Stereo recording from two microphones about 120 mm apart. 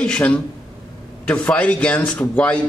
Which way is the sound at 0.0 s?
10° left (ahead or behind).